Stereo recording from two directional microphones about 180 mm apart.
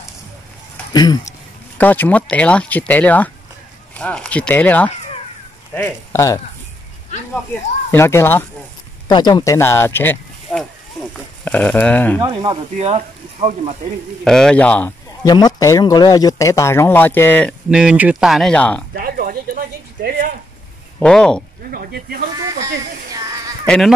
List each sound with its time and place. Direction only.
0.9 s speech: 20° left (ahead or behind)
1.8 s speech: 10° left (ahead or behind)
7.9 s speech: 15° left (ahead or behind)
9.0 s speech: 25° left (ahead or behind)
12.2 s speech: 25° right (ahead or behind)
12.7 s speech: 35° right (ahead or behind)
14.2 s speech: 5° left (ahead or behind)
15.2 s speech: 20° left (ahead or behind)
17.6 s speech: 5° right (ahead or behind)
18.9 s a sound: 55° right (ahead or behind)
21.0 s speech: 5° left (ahead or behind)
21.6 s speech: 55° right (ahead or behind)